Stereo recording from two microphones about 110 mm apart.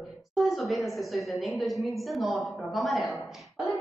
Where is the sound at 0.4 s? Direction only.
Centre (ahead or behind).